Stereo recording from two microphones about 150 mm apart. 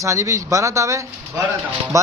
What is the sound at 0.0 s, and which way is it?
A man's voice, 20° right (ahead or behind).